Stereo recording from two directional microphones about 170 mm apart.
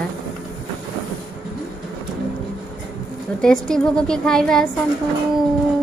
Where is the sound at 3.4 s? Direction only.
5° left (ahead or behind).